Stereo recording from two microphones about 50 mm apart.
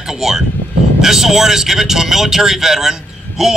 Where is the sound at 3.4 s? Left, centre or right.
Centre.